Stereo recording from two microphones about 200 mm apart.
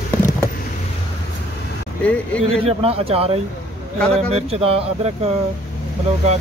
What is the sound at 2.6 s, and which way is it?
Speech, 30° right (ahead or behind).